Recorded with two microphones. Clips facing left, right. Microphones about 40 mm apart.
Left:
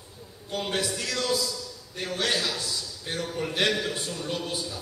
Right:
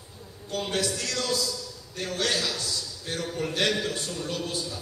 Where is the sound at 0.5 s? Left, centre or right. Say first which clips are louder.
Even; centre.